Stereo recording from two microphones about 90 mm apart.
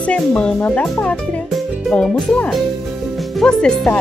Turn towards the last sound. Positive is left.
turn(degrees=10)  # may be behind; listen again after turning